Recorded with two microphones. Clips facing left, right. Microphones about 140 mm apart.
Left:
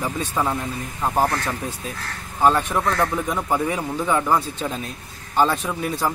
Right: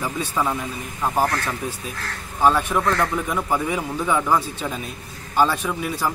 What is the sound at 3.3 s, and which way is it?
Speech, 15° left (ahead or behind).